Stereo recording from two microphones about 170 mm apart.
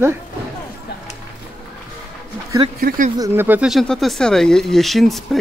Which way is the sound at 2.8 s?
60° right (ahead or behind).